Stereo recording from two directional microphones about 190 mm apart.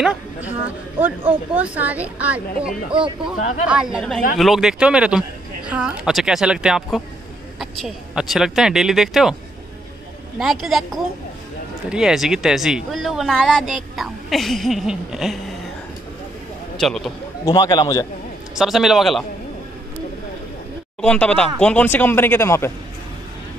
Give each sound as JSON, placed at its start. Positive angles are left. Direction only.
{"t": 0.0, "sound": "a sound", "side_deg": -5}
{"t": 1.5, "sound": "a woman's voice", "side_deg": -10}
{"t": 3.3, "sound": "speech", "side_deg": 40}
{"t": 3.6, "sound": "speech", "side_deg": -5}
{"t": 10.4, "sound": "speech", "side_deg": 0}
{"t": 16.7, "sound": "speech", "side_deg": 0}
{"t": 17.5, "sound": "a man's voice", "side_deg": 20}
{"t": 18.5, "sound": "speech", "side_deg": 0}
{"t": 21.0, "sound": "speech", "side_deg": 5}